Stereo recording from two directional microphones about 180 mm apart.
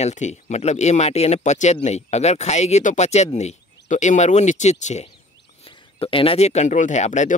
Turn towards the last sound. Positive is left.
turn(degrees=40)  # may be behind; listen again after turning